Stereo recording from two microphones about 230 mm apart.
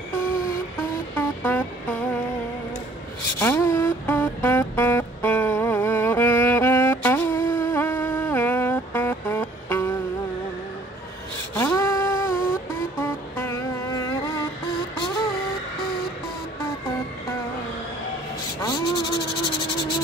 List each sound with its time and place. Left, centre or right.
1.1 s music: centre
3.3 s music: centre
11.5 s a sound: centre
13.0 s music: centre
18.6 s rub: centre